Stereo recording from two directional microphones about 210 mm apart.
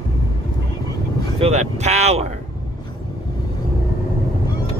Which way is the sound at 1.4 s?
30° right (ahead or behind).